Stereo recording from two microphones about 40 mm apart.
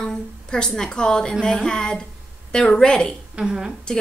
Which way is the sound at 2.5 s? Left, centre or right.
Centre.